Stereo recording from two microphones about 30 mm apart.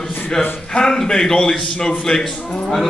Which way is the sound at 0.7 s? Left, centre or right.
Left.